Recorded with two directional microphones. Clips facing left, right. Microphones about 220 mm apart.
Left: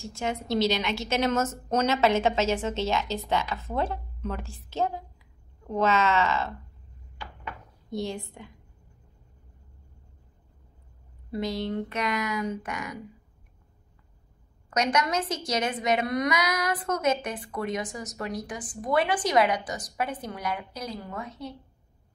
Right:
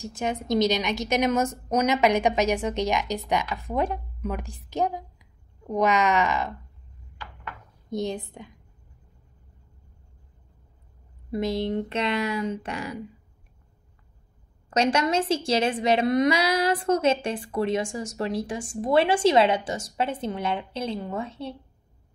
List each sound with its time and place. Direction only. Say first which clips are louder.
0.0 s a woman's voice: right 2 dB; 15° right (ahead or behind)
7.9 s a woman's voice: right 3 dB; 20° right (ahead or behind)
11.3 s a woman's voice: right 4 dB; 25° right (ahead or behind)
14.7 s a woman's voice: right 4 dB; 30° right (ahead or behind)